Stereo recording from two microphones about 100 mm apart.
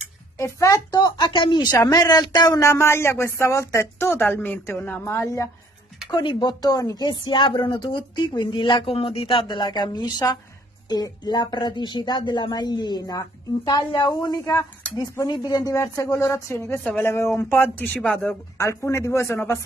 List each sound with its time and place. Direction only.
0.4 s speech: 30° left (ahead or behind); by 1.8 s 50° left (ahead or behind)
1.8 s speech: 35° left (ahead or behind)
2.6 s speech: 25° left (ahead or behind)
6.0 s speech: 50° left (ahead or behind)
7.1 s speech: 55° left (ahead or behind); by 14.7 s 35° left (ahead or behind)
15.2 s speech: 45° left (ahead or behind); by 18.3 s 15° left (ahead or behind)
18.6 s speech: 30° left (ahead or behind)